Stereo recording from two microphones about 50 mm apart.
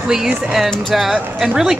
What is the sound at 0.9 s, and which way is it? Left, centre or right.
Speech, centre.